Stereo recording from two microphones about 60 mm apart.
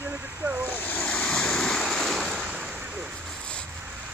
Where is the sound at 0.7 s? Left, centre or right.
Left.